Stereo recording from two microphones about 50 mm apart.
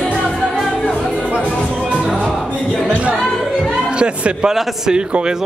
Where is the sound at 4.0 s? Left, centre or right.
Centre.